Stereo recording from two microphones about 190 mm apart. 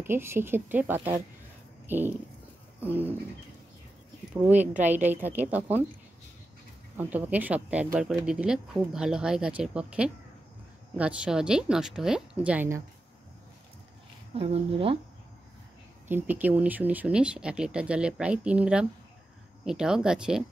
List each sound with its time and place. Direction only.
0.0 s a woman's voice: 10° right (ahead or behind)
4.3 s a woman's voice: 10° right (ahead or behind)
7.0 s a woman's voice: 10° right (ahead or behind)
14.3 s speech: 30° right (ahead or behind)
16.1 s speech: 10° right (ahead or behind)